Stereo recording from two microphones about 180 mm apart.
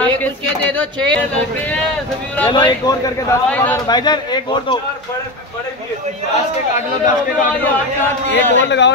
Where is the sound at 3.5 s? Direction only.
10° left (ahead or behind).